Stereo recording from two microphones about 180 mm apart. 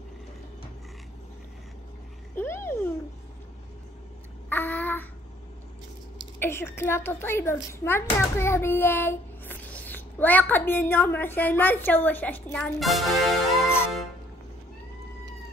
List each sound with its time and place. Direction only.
2.3 s a sound: 15° left (ahead or behind)
4.5 s babbling: 10° left (ahead or behind)
6.4 s a child's voice: 15° left (ahead or behind)